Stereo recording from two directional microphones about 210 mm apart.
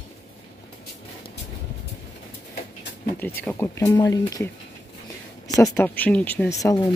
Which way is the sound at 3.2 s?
10° left (ahead or behind).